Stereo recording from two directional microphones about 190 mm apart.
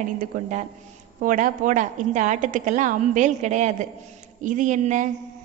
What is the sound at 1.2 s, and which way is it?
A woman's voice, 45° right (ahead or behind).